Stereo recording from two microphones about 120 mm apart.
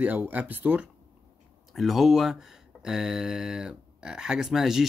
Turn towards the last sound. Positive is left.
turn(degrees=-5)  # may be behind; listen again after turning